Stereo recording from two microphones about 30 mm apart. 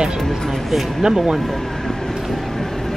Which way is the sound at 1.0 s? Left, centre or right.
Centre.